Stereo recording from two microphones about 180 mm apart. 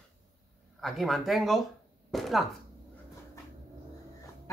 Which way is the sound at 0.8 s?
Centre (ahead or behind).